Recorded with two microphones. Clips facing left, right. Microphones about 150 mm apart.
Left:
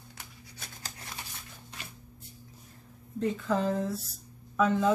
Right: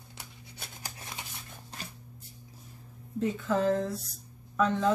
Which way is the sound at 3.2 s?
Centre (ahead or behind).